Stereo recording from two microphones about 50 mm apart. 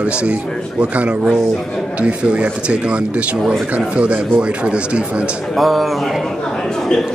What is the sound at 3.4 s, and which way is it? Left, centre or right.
Speech, centre.